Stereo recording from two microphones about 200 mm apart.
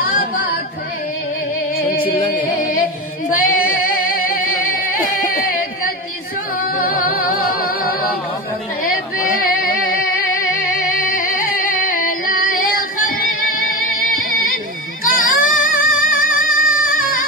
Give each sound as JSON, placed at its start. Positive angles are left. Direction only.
{"t": 3.3, "sound": "singing", "side_deg": 45}
{"t": 6.8, "sound": "music", "side_deg": 50}
{"t": 9.4, "sound": "music", "side_deg": 45}
{"t": 15.0, "sound": "music", "side_deg": 45}